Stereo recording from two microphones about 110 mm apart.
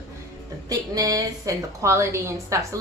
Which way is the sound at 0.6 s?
35° right (ahead or behind).